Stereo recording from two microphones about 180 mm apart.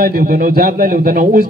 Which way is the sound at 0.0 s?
55° right (ahead or behind).